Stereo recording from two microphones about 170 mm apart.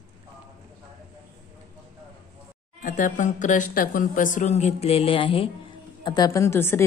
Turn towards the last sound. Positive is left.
turn(degrees=15)  # may be behind; listen again after turning